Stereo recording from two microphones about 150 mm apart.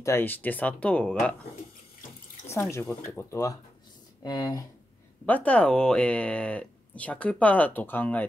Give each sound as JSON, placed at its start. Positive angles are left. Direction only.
{"t": 0.0, "sound": "speech", "side_deg": 15}
{"t": 2.5, "sound": "speech", "side_deg": 20}
{"t": 5.2, "sound": "speech", "side_deg": 10}